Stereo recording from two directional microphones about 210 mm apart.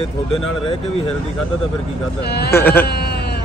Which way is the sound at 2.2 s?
50° left (ahead or behind).